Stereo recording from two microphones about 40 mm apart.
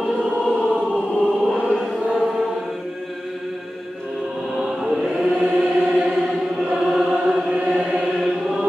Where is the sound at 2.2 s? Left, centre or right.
Centre.